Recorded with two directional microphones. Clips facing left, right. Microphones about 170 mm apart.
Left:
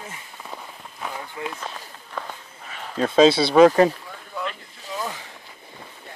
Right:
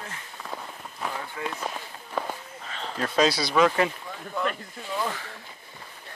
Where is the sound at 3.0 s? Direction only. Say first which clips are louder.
Left 8 dB; 25° left (ahead or behind).